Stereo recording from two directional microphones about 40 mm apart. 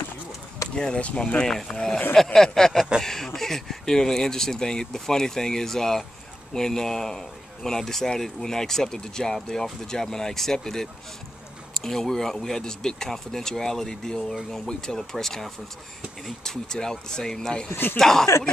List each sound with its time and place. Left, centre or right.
0.7 s speech: centre
17.6 s speech: left
17.9 s speech: centre